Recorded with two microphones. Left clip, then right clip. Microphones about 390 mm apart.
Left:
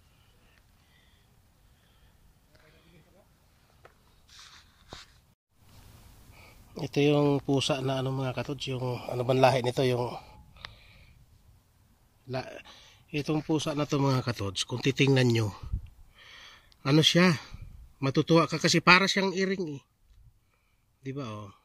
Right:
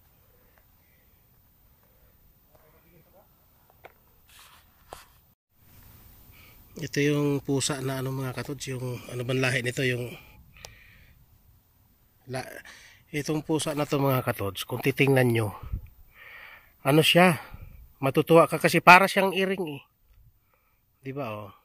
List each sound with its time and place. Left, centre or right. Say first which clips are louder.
6.3 s speech: left 2 dB; centre
9.9 s speech: left 4 dB; left
10.5 s gasp: left 1 dB; centre
12.3 s speech: right 1 dB; centre
21.0 s speech: right 5 dB; centre